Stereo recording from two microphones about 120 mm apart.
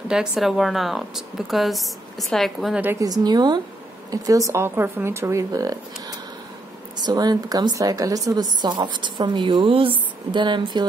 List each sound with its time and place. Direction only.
0.1 s a woman's voice: 5° right (ahead or behind)
3.0 s a woman's voice: 35° right (ahead or behind)